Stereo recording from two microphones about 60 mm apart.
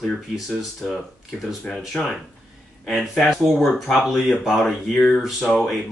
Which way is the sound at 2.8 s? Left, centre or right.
Centre.